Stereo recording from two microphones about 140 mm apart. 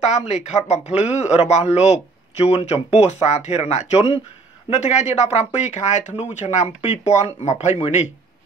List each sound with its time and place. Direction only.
0.0 s speech: 55° left (ahead or behind)